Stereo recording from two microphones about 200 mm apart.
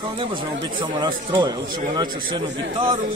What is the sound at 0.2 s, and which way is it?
Speech, 25° right (ahead or behind).